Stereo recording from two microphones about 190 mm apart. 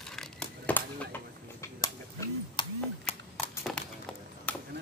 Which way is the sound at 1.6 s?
15° left (ahead or behind).